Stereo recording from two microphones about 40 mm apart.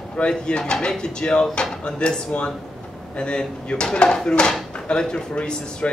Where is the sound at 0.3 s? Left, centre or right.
Left.